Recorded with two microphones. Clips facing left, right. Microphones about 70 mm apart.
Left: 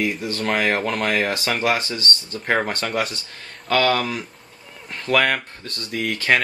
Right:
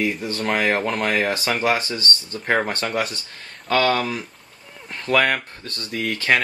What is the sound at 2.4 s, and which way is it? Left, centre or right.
Speech, centre.